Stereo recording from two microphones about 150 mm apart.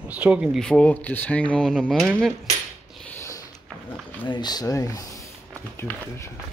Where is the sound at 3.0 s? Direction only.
15° left (ahead or behind).